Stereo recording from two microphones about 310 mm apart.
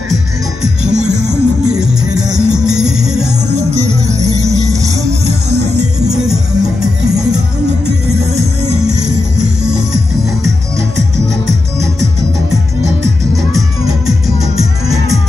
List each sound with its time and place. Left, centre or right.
0.1 s music: centre
3.5 s music: right
4.1 s music: centre
5.5 s music: right
6.1 s music: centre
13.6 s music: centre